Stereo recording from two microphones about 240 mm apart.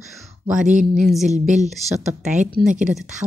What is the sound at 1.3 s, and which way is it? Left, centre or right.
Speech, right.